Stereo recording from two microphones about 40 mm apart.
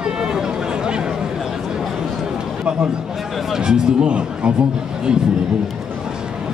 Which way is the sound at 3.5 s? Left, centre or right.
Centre.